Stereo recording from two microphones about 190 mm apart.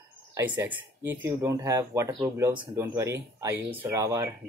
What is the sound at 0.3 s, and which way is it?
Speech, 15° right (ahead or behind).